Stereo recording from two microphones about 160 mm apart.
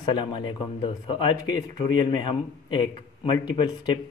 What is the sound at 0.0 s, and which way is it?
A man's voice, 25° left (ahead or behind).